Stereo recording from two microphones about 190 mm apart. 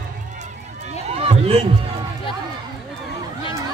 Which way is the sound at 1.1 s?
30° right (ahead or behind).